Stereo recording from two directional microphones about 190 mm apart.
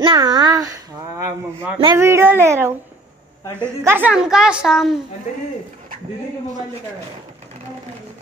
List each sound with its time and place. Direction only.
0.0 s a woman's voice: 25° right (ahead or behind); by 4.9 s centre (ahead or behind)